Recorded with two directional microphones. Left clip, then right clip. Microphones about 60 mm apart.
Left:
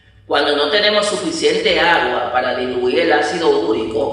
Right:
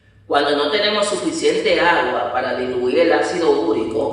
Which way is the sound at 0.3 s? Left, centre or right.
Right.